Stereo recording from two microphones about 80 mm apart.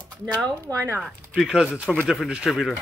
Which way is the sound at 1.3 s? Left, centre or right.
Centre.